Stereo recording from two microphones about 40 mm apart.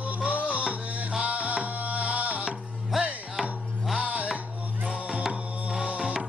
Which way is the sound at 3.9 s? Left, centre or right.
Right.